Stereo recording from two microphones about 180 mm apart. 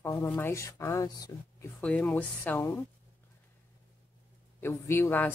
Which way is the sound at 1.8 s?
10° left (ahead or behind).